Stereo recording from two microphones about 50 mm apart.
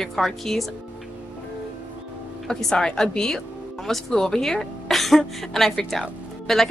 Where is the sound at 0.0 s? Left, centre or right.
Centre.